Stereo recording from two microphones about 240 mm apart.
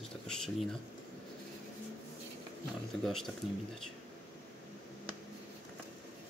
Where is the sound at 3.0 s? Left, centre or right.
Centre.